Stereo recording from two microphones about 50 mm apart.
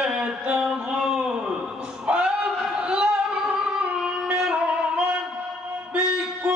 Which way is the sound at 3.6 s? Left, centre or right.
Centre.